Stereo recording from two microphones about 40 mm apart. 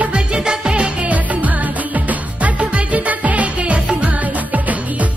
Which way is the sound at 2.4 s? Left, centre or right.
Right.